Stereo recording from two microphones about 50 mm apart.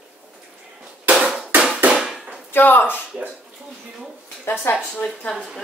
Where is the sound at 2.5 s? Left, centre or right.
Left.